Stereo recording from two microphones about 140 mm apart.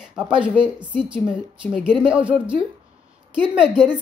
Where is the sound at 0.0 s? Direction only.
5° right (ahead or behind).